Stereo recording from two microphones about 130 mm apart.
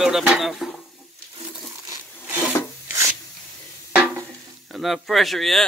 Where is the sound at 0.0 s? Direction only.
5° right (ahead or behind).